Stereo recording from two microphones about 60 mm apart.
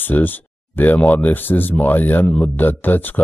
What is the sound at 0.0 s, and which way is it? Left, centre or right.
Speech, left.